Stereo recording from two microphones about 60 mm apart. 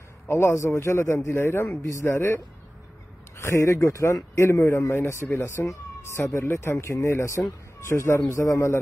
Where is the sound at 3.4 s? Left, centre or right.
Left.